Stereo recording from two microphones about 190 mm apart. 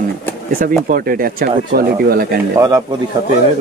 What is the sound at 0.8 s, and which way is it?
A man's voice, 50° right (ahead or behind).